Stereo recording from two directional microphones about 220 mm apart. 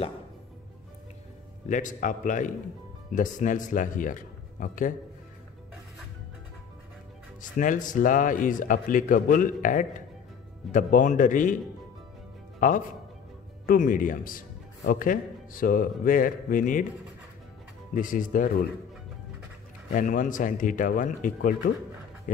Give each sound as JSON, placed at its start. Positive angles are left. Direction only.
{"t": 1.7, "sound": "a man's voice", "side_deg": 35}
{"t": 7.5, "sound": "a man's voice", "side_deg": 35}
{"t": 12.5, "sound": "a man's voice", "side_deg": 40}
{"t": 17.9, "sound": "a man's voice", "side_deg": 35}
{"t": 19.9, "sound": "a man's voice", "side_deg": 35}